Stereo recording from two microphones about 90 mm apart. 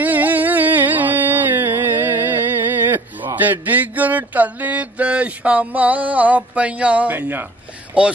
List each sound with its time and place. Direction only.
0.0 s carnatic music: 20° right (ahead or behind)
3.3 s mantra: 20° right (ahead or behind)
8.0 s mantra: 10° right (ahead or behind)